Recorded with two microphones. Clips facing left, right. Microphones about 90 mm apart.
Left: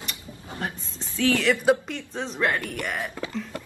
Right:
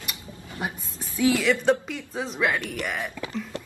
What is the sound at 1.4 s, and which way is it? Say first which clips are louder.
Speech: left 1 dB; 5° left (ahead or behind).